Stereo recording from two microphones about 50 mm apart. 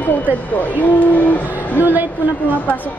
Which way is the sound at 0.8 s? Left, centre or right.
Left.